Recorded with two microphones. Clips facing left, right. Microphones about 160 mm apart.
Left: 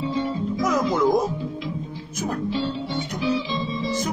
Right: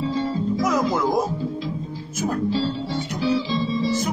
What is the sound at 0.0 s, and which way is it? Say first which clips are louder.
Music: right 1 dB; 30° right (ahead or behind).